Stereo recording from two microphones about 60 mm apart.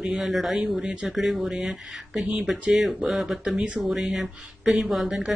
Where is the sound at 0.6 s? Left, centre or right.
Right.